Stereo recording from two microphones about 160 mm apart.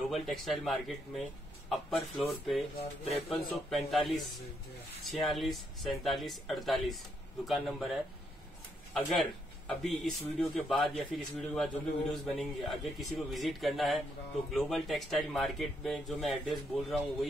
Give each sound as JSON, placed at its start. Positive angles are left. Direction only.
{"t": 0.1, "sound": "speech", "side_deg": 0}
{"t": 2.8, "sound": "speech", "side_deg": 40}
{"t": 3.7, "sound": "speech", "side_deg": 0}